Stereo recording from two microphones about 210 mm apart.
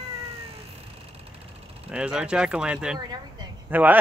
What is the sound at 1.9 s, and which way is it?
Speech, 5° right (ahead or behind).